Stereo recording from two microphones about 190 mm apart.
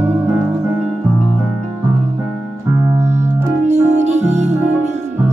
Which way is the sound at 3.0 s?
35° right (ahead or behind).